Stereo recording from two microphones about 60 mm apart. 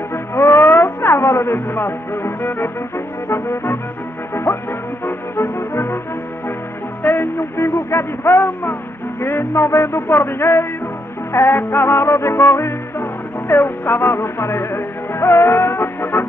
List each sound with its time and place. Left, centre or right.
0.1 s music: left
7.0 s speech: left
9.2 s music: left